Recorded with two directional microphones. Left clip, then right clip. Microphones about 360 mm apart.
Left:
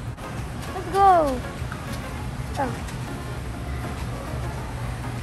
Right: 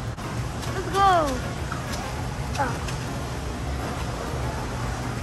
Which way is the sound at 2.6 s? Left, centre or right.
Centre.